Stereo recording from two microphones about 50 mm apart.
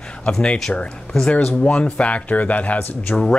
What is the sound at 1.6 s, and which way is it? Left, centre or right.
Speech, left.